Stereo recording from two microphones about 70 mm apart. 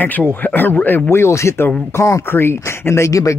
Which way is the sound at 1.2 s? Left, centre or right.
Left.